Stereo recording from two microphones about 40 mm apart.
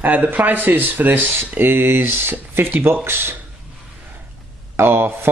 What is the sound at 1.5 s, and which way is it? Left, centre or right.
Speech, right.